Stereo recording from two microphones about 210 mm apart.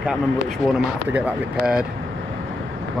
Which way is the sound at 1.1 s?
5° right (ahead or behind).